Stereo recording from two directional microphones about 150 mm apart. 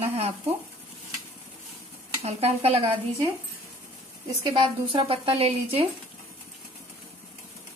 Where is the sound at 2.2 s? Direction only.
45° right (ahead or behind).